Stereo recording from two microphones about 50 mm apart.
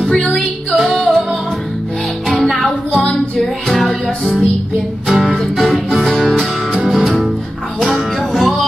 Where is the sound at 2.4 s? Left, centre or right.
Centre.